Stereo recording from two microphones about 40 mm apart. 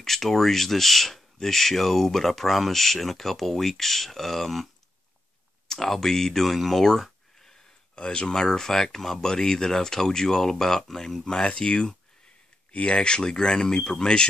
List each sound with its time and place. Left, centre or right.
0.0 s speech: centre
5.7 s speech: centre
7.9 s speech: left; by 11.2 s centre
11.2 s speech: left